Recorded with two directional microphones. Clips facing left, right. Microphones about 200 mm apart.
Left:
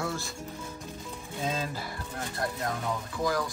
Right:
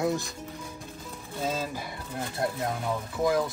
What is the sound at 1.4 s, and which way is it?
Speech, 5° right (ahead or behind).